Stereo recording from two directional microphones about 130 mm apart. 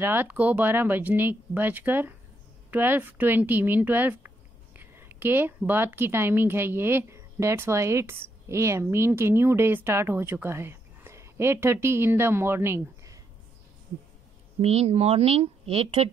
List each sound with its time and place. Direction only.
0.0 s a woman's voice: 15° right (ahead or behind)
14.6 s a woman's voice: 50° right (ahead or behind)